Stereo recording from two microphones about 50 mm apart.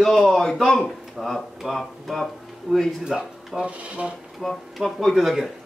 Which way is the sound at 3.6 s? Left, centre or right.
Right.